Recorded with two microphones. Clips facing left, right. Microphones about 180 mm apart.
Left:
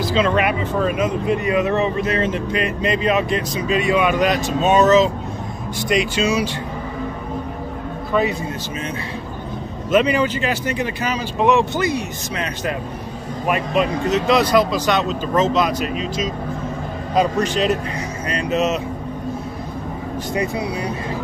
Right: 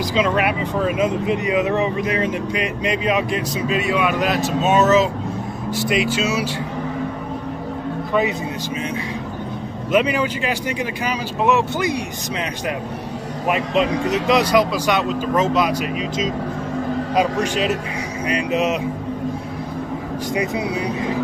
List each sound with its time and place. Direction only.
0.0 s speech: 10° right (ahead or behind)
0.9 s speech: 20° right (ahead or behind); by 6.5 s 5° right (ahead or behind)
8.1 s a man's voice: 15° right (ahead or behind)
9.8 s speech: 10° right (ahead or behind)
17.1 s speech: 10° right (ahead or behind)
20.3 s speech: 20° right (ahead or behind)